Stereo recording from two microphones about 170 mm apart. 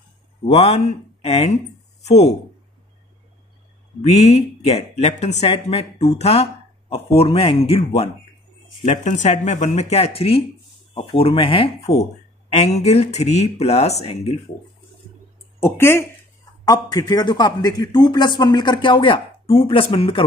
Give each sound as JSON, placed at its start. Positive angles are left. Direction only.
{"t": 0.5, "sound": "speech", "side_deg": 40}
{"t": 4.0, "sound": "speech", "side_deg": 40}
{"t": 15.6, "sound": "speech", "side_deg": 15}